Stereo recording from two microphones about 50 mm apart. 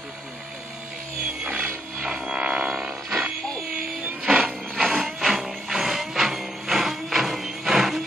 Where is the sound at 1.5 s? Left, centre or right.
Right.